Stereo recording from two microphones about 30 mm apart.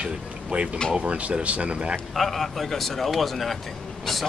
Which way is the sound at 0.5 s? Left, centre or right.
Right.